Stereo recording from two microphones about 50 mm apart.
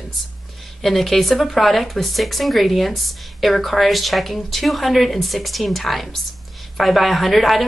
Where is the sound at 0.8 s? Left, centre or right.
Centre.